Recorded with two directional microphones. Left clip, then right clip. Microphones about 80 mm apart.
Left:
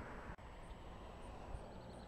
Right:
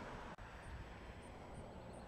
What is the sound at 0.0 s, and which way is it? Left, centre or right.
Vehicle, right.